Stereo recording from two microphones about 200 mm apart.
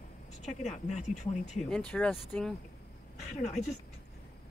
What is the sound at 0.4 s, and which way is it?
Speech, 35° left (ahead or behind).